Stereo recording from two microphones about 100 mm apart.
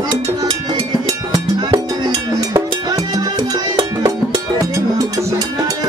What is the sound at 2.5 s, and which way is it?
Music, 35° right (ahead or behind).